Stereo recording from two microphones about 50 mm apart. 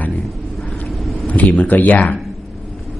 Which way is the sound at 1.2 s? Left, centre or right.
Left.